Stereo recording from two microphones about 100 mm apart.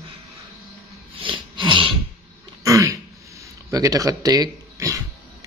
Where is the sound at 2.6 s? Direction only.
30° right (ahead or behind).